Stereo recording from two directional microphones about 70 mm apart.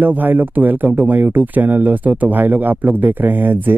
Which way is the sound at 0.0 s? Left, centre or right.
Right.